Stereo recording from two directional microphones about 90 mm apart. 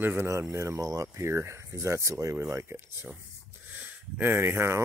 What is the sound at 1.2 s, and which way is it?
Speech, 30° right (ahead or behind).